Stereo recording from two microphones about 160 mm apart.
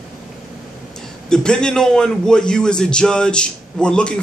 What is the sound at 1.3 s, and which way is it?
A man's voice, 5° left (ahead or behind).